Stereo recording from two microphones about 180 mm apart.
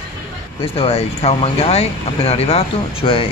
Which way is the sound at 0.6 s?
30° left (ahead or behind).